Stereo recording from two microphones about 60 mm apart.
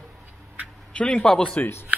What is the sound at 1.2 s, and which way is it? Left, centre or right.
Speech, centre.